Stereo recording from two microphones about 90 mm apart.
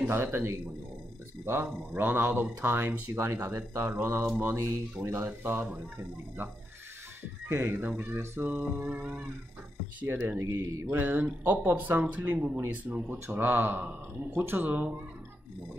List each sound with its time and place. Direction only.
0.1 s speech: 25° right (ahead or behind)
7.4 s speech: 25° right (ahead or behind)
10.0 s speech: 25° right (ahead or behind)
10.4 s speech: 35° right (ahead or behind); by 12.5 s 15° right (ahead or behind)
12.5 s speech: 25° right (ahead or behind)